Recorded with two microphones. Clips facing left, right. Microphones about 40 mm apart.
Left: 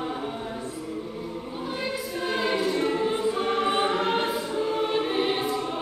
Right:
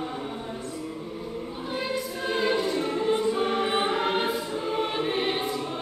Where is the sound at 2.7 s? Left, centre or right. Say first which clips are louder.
Left 2 dB; centre.